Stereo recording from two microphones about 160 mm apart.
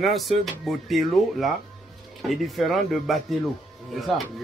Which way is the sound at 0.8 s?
Centre (ahead or behind).